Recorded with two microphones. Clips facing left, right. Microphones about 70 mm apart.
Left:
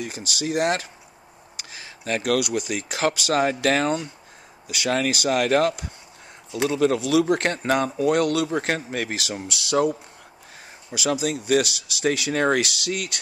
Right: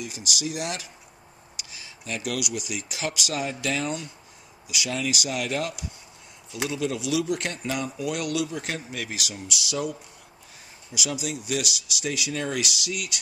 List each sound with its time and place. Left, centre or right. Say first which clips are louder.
0.0 s speech: left 3 dB; left
4.6 s speech: left 6 dB; left